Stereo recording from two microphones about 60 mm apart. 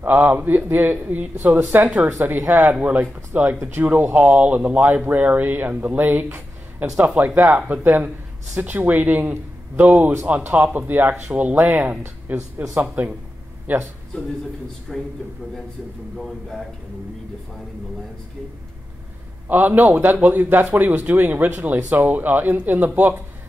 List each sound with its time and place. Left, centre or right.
0.0 s speech: right
14.9 s speech: centre
16.2 s speech: centre
19.4 s speech: right